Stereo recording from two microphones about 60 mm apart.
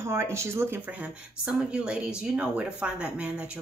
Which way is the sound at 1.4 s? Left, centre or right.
Centre.